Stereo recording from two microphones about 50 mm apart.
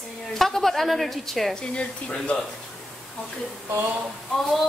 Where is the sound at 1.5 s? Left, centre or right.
Left.